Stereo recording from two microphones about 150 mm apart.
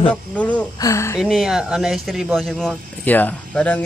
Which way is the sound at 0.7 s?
20° left (ahead or behind).